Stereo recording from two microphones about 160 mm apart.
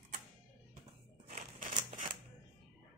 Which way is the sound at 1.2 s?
55° right (ahead or behind).